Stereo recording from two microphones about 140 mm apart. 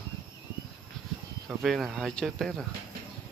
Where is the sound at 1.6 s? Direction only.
Centre (ahead or behind).